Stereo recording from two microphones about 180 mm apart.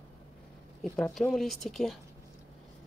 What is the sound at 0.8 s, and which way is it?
Speech, 5° left (ahead or behind).